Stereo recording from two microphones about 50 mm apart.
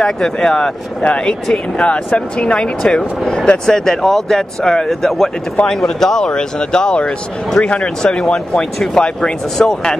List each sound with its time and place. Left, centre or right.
0.0 s speech: centre
2.8 s speech: centre